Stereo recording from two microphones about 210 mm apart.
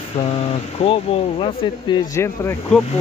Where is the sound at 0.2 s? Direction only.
30° left (ahead or behind); by 2.8 s 10° left (ahead or behind).